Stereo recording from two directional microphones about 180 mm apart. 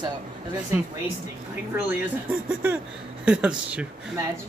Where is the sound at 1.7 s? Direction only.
10° right (ahead or behind).